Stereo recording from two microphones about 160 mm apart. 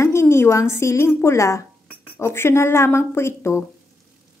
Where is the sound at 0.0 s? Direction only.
15° left (ahead or behind).